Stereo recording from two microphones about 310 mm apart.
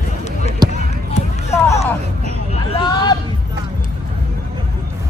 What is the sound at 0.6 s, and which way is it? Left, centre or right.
Basketball bounce, centre.